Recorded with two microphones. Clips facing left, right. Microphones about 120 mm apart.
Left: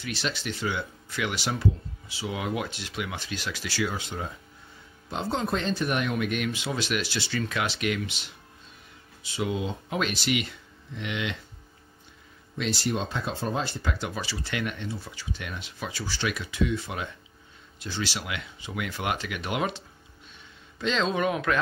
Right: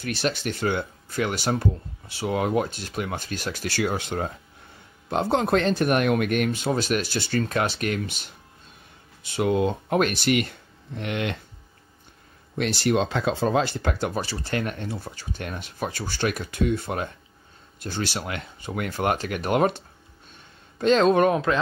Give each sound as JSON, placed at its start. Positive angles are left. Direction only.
{"t": 0.0, "sound": "speech", "side_deg": -50}
{"t": 9.2, "sound": "speech", "side_deg": -55}
{"t": 12.5, "sound": "speech", "side_deg": -65}
{"t": 20.8, "sound": "speech", "side_deg": -50}
{"t": 21.3, "sound": "speech", "side_deg": -30}